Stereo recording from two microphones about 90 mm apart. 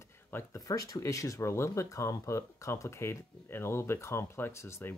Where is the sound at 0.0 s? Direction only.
25° left (ahead or behind).